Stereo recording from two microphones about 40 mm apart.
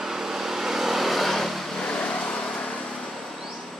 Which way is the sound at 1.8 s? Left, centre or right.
Left.